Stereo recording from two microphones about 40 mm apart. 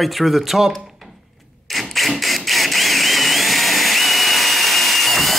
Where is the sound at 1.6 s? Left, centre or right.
Centre.